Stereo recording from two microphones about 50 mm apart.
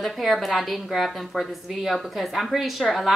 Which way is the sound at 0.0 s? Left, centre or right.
Centre.